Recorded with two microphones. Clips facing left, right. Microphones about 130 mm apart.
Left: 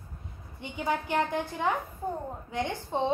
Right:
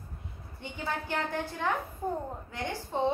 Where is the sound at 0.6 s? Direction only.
20° left (ahead or behind).